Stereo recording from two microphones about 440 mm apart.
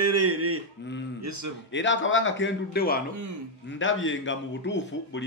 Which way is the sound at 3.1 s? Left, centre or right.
Right.